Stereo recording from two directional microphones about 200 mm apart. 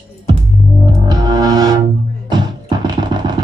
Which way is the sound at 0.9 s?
20° right (ahead or behind).